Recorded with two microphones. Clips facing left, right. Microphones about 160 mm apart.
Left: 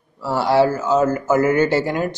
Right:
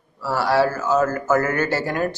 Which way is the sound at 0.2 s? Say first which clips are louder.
Left 3 dB; 20° left (ahead or behind).